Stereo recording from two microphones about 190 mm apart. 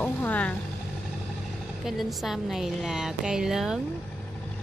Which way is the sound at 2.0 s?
Centre (ahead or behind).